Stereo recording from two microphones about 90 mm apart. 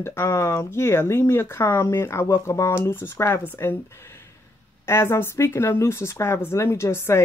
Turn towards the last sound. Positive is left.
turn(degrees=30)  # may be behind; listen again after turning